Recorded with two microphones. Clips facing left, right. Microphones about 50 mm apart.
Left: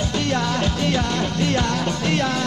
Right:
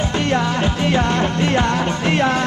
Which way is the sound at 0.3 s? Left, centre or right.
Right.